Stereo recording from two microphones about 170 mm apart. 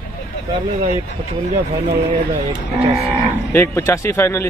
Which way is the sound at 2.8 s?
35° right (ahead or behind).